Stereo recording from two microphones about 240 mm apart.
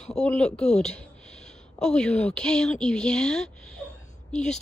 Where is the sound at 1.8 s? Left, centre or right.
Centre.